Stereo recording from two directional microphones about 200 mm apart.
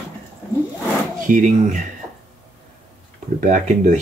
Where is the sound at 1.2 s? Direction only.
40° right (ahead or behind).